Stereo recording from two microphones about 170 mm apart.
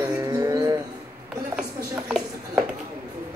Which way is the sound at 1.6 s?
5° right (ahead or behind).